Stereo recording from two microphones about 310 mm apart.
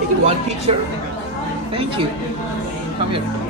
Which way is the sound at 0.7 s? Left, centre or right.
Centre.